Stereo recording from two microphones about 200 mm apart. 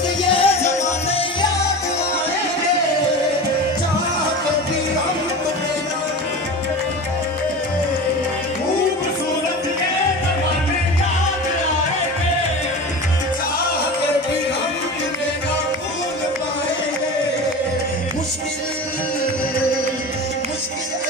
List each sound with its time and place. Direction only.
0.2 s music: 25° left (ahead or behind)